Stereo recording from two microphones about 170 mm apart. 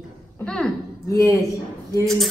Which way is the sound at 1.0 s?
15° left (ahead or behind).